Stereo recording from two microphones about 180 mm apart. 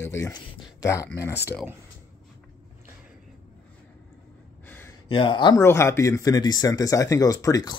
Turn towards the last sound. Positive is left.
turn(degrees=20)  # may be behind; listen again after turning